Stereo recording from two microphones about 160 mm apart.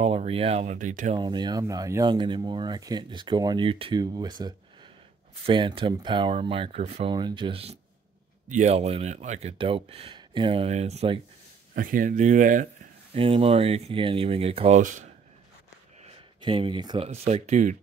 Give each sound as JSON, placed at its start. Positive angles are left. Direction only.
{"t": 0.0, "sound": "speech", "side_deg": -40}
{"t": 1.1, "sound": "speech", "side_deg": -30}
{"t": 11.7, "sound": "speech", "side_deg": -60}
{"t": 13.1, "sound": "speech", "side_deg": -35}
{"t": 14.8, "sound": "speech", "side_deg": -55}
{"t": 16.3, "sound": "speech", "side_deg": -30}
{"t": 17.1, "sound": "speech", "side_deg": -45}